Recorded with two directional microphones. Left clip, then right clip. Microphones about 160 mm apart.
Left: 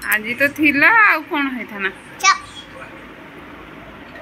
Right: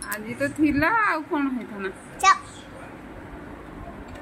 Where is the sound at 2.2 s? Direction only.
75° right (ahead or behind).